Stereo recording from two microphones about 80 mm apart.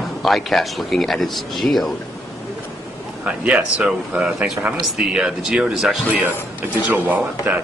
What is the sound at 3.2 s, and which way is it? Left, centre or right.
Speech, centre.